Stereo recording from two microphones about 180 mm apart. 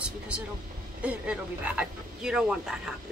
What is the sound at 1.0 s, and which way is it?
Speech, 5° right (ahead or behind).